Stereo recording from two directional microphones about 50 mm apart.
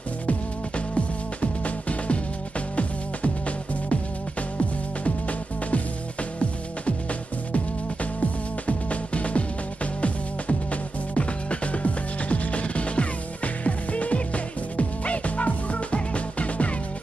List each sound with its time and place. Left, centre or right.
0.3 s music: left
8.6 s music: left
10.7 s music: left